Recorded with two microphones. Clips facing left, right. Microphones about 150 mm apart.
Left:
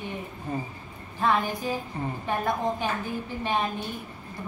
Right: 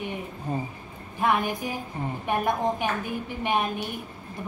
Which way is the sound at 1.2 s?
15° right (ahead or behind).